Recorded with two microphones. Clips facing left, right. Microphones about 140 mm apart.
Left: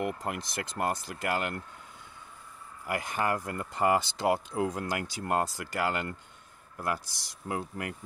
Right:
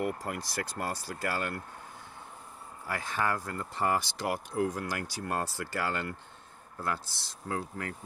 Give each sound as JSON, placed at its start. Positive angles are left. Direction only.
{"t": 0.0, "sound": "speech", "side_deg": 20}
{"t": 2.9, "sound": "speech", "side_deg": 15}